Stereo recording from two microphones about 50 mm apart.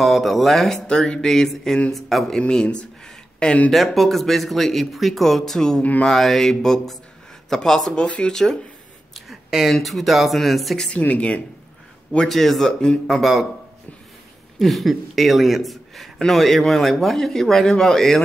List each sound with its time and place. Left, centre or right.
0.0 s speech: centre
0.9 s speech: centre
2.2 s speech: centre
3.7 s speech: centre
5.8 s speech: left
6.0 s speech: centre
7.9 s speech: centre
9.1 s a sound: centre
9.7 s speech: centre
10.9 s speech: left
12.3 s speech: centre
14.6 s speech: centre